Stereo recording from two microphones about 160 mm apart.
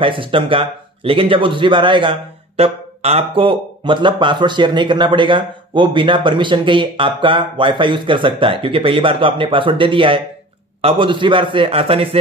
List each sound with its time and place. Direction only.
0.0 s a man's voice: 35° right (ahead or behind)